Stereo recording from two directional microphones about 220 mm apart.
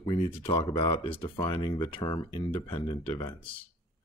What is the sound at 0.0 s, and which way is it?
Speech, 20° left (ahead or behind).